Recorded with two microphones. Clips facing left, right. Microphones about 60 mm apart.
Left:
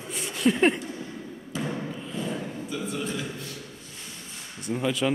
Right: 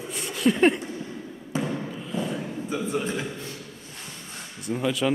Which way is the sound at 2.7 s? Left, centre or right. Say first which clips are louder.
Right 4 dB; right.